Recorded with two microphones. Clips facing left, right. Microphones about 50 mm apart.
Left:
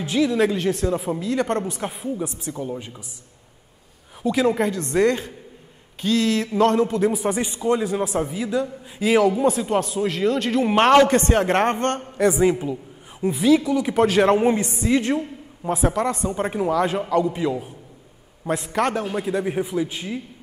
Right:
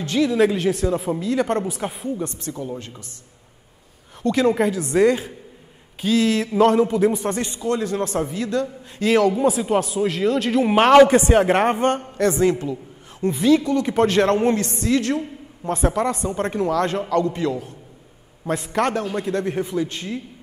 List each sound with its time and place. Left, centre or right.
0.0 s a man's voice: centre
4.2 s a man's voice: centre
12.2 s a man's voice: centre
15.7 s a man's voice: centre